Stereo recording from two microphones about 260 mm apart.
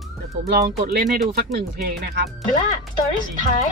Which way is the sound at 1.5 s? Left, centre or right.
Right.